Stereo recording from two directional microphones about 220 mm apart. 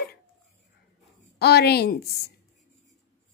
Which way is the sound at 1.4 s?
45° left (ahead or behind).